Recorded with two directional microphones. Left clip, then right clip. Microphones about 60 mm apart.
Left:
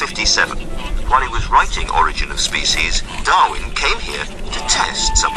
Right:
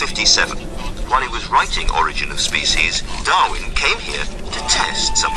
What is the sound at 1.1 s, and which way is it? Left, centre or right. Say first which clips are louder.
Speech: left 2 dB; centre.